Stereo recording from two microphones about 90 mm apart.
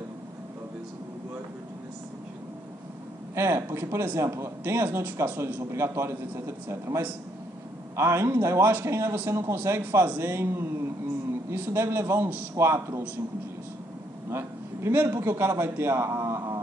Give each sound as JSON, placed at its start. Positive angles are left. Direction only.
{"t": 3.3, "sound": "a man's voice", "side_deg": -30}
{"t": 14.3, "sound": "a man's voice", "side_deg": -25}